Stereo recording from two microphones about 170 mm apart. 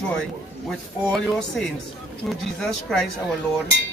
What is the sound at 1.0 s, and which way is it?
Speech, 5° left (ahead or behind).